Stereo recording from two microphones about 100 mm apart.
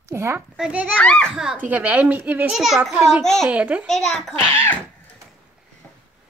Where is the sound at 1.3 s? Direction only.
5° right (ahead or behind).